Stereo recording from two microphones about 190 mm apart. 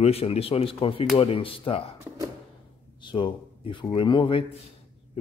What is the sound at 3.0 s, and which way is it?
Speech, 25° left (ahead or behind).